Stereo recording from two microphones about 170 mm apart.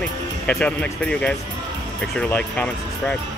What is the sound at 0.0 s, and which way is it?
Speech, 5° left (ahead or behind).